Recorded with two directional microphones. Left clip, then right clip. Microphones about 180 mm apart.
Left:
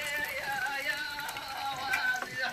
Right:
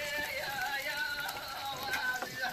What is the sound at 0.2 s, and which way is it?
Music, 65° left (ahead or behind).